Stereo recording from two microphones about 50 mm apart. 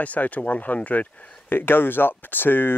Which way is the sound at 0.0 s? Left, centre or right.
Left.